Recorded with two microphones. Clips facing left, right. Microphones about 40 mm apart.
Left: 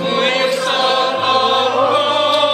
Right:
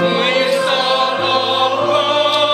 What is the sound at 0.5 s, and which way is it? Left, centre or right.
Choir, centre.